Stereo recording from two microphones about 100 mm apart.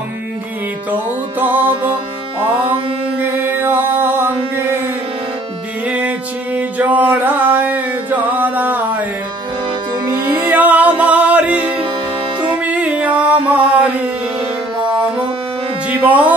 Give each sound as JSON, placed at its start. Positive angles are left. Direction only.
{"t": 1.4, "sound": "music", "side_deg": -20}
{"t": 3.2, "sound": "mantra", "side_deg": -20}
{"t": 5.9, "sound": "music", "side_deg": -15}
{"t": 10.5, "sound": "music", "side_deg": -15}
{"t": 11.6, "sound": "music", "side_deg": -55}
{"t": 12.6, "sound": "music", "side_deg": -15}
{"t": 16.1, "sound": "music", "side_deg": -15}